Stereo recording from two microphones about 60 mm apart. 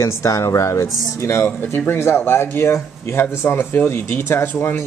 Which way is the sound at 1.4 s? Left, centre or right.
Left.